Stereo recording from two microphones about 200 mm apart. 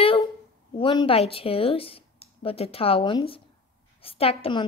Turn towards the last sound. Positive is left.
turn(degrees=25)  # may be behind; listen again after turning